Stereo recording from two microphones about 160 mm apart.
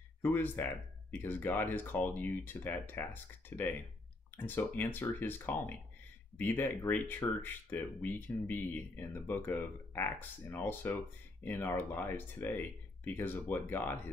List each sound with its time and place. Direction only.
0.2 s speech: 10° left (ahead or behind)